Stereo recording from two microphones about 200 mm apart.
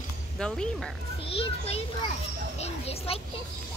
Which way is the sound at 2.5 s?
30° left (ahead or behind).